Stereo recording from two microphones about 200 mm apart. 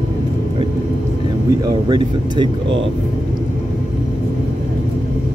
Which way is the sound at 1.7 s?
20° right (ahead or behind).